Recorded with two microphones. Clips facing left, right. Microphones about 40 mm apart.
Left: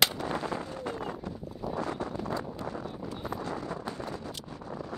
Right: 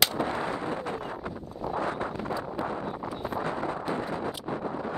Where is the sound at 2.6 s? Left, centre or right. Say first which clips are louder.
Right 5 dB; right.